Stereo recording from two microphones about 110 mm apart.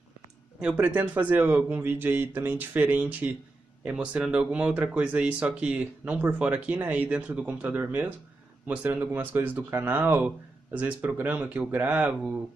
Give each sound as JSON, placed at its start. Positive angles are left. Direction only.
{"t": 0.6, "sound": "speech", "side_deg": -10}